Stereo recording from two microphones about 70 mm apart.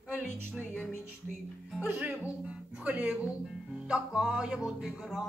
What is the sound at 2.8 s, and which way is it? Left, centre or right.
Speech, right.